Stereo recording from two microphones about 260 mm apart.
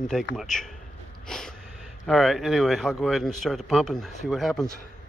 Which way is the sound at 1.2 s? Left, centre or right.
Centre.